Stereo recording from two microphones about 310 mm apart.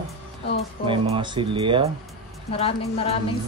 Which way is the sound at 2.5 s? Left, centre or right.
Centre.